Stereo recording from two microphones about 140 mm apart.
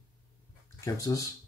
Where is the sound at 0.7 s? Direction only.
25° left (ahead or behind).